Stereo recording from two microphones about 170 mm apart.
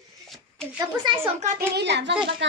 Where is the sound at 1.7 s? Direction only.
90° right.